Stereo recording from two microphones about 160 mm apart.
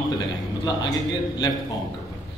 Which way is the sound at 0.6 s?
25° left (ahead or behind).